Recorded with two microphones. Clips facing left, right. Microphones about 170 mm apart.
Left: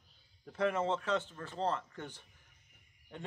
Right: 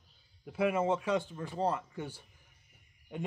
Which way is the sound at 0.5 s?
10° right (ahead or behind).